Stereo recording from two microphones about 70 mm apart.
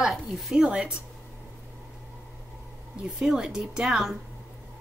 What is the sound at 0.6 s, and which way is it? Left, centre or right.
Speech, centre.